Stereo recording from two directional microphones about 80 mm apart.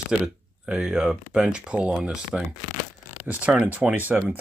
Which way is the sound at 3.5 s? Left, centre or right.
Centre.